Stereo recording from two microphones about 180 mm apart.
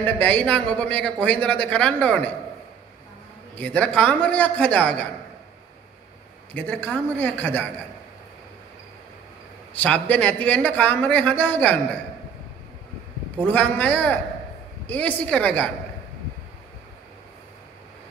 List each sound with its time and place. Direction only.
0.0 s a man's voice: 10° left (ahead or behind)
3.5 s a man's voice: 10° left (ahead or behind)
6.5 s a man's voice: 10° left (ahead or behind)
9.8 s a man's voice: 10° left (ahead or behind)
13.5 s a man's voice: 10° left (ahead or behind)